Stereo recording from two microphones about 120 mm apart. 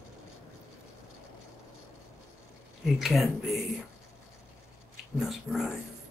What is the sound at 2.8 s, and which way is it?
Speech, centre (ahead or behind).